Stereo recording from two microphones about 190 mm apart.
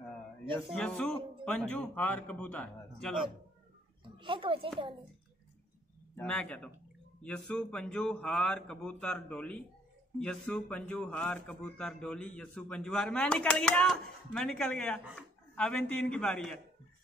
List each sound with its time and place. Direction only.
0.7 s a man's voice: 5° left (ahead or behind)
4.2 s a child's voice: 25° right (ahead or behind)
6.1 s a man's voice: 5° left (ahead or behind)